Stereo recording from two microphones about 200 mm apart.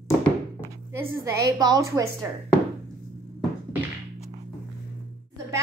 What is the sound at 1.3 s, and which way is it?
A woman's voice, 15° right (ahead or behind).